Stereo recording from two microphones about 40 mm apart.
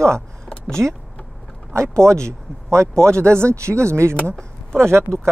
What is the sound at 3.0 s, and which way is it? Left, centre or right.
Speech, left.